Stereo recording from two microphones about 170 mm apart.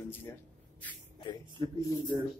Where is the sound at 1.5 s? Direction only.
25° right (ahead or behind).